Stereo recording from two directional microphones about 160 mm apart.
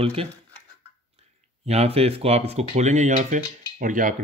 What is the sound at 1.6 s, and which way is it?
Speech, 40° right (ahead or behind).